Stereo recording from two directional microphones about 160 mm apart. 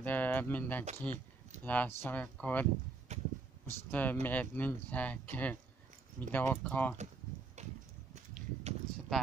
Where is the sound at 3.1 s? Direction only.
45° right (ahead or behind).